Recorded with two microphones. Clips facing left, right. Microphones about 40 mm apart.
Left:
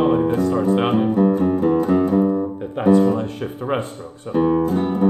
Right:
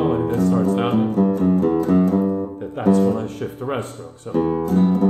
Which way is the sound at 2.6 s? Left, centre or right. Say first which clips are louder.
Left 2 dB; left.